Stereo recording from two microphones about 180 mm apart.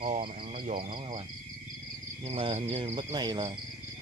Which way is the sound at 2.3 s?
30° right (ahead or behind).